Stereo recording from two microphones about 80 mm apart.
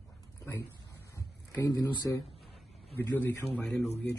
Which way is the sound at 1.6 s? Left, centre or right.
Left.